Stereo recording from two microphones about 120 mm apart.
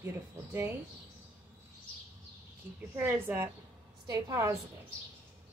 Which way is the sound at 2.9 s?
20° right (ahead or behind).